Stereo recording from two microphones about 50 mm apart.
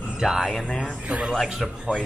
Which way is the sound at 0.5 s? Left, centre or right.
Left.